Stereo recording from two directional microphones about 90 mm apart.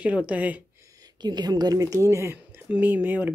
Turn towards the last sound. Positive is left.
turn(degrees=-20)  # may be behind; listen again after turning